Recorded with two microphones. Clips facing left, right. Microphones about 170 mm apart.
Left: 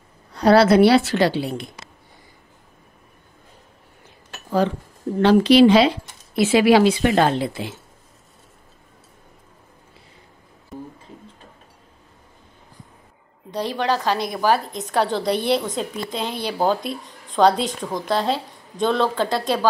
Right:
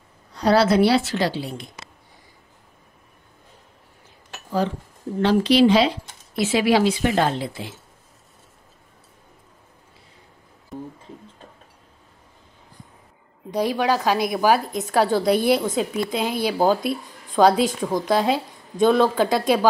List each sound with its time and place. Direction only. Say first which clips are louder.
0.3 s a woman's voice: left 4 dB; 60° left (ahead or behind)
5.2 s speech: left 4 dB; 65° left (ahead or behind)
10.7 s music: right 1 dB; centre (ahead or behind)
13.5 s a woman's voice: right 2 dB; 10° right (ahead or behind)